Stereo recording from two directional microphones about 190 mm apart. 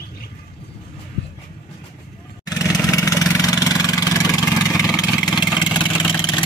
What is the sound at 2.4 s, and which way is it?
Vehicle, 20° left (ahead or behind).